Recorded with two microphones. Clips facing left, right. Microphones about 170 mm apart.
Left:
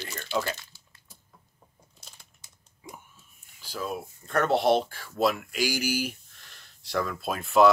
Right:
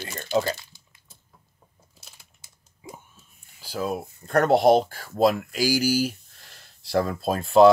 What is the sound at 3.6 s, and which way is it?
Speech, 40° right (ahead or behind).